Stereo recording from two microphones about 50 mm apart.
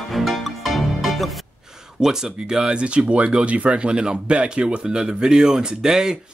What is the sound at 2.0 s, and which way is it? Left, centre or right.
Speech, centre.